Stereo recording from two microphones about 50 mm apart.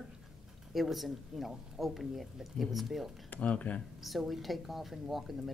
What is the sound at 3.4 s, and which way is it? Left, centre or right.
Speech, left.